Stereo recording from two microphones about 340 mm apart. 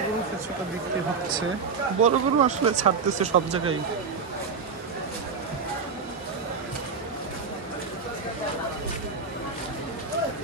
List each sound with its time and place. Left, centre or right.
2.0 s speech: right